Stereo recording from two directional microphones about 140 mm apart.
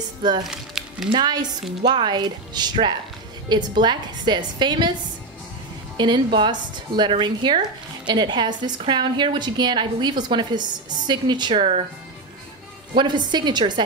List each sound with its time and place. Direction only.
0.2 s a woman's voice: 30° right (ahead or behind)
0.5 s music: 5° right (ahead or behind)
1.1 s a woman's voice: 30° right (ahead or behind)
5.9 s a woman's voice: 35° right (ahead or behind)
12.9 s a woman's voice: 35° right (ahead or behind)